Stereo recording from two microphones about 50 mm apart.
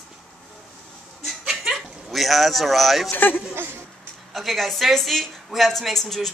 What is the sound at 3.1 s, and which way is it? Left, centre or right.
Speech, left.